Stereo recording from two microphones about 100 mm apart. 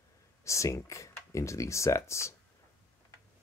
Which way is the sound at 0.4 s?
30° left (ahead or behind).